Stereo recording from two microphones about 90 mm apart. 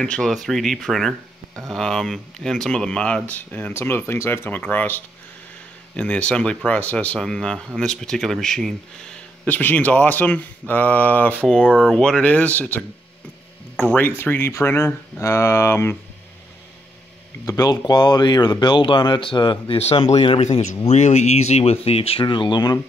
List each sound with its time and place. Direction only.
0.0 s speech: 10° left (ahead or behind)
11.8 s speech: 5° left (ahead or behind); by 16.0 s 30° left (ahead or behind)
17.5 s speech: 45° left (ahead or behind); by 20.4 s 85° left
21.8 s speech: 90° left
22.2 s speech: 60° left (ahead or behind)